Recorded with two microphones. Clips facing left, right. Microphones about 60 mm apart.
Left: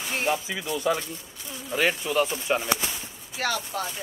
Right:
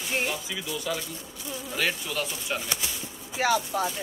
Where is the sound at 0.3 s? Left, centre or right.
Left.